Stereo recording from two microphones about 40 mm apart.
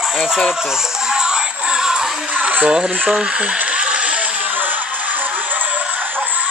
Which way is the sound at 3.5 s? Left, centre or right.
Right.